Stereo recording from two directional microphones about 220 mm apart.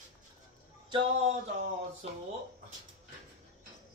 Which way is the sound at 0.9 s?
30° right (ahead or behind).